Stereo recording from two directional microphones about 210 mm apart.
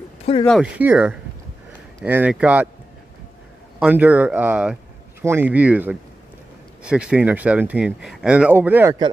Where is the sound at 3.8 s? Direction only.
10° right (ahead or behind).